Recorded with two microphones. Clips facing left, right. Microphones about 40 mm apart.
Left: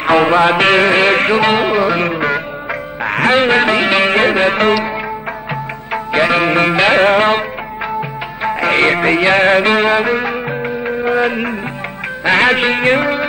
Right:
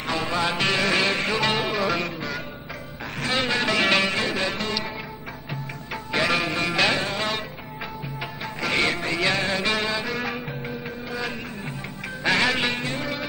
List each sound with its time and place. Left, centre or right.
0.0 s music: left
3.0 s speech: left
4.0 s music: left
6.1 s music: left
8.5 s music: left
10.9 s music of bollywood: left
12.3 s music: left